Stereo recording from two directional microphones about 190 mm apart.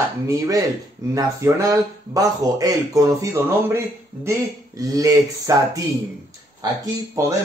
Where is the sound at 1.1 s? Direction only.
15° right (ahead or behind).